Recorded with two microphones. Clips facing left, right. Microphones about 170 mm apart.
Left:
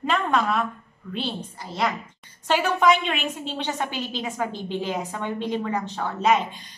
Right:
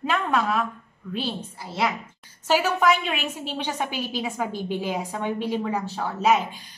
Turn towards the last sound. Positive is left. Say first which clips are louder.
# even
turn(degrees=-5)  # may be behind; listen again after turning